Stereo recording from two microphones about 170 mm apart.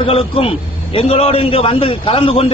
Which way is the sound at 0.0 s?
35° left (ahead or behind).